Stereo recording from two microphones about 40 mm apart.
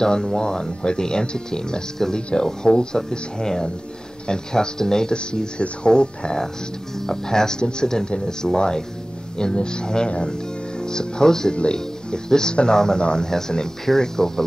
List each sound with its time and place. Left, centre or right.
0.0 s speech: centre